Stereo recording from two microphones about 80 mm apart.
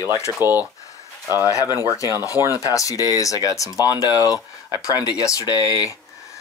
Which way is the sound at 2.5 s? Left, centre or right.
Left.